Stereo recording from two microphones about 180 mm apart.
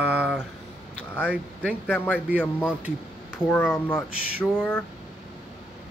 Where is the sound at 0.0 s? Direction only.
10° right (ahead or behind).